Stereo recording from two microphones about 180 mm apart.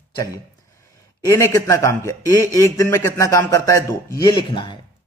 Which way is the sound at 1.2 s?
15° left (ahead or behind).